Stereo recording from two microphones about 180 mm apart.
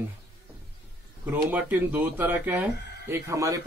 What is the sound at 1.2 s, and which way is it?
Speech, 10° right (ahead or behind).